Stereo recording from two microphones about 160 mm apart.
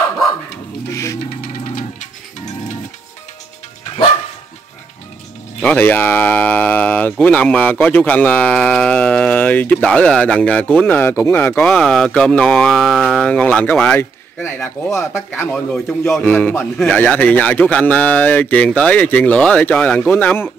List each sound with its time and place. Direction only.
1.4 s music: 60° left (ahead or behind)
5.6 s speech: 10° left (ahead or behind)